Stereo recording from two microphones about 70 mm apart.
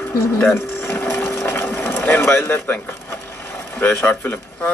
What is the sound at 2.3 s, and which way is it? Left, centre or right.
Speech, left.